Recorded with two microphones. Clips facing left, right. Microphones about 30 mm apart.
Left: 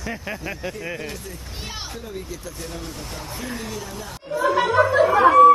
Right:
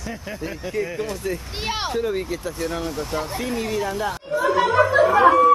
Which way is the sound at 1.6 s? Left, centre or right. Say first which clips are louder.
Right 11 dB; right.